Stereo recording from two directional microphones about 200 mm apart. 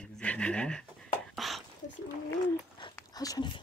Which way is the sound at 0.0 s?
5° left (ahead or behind).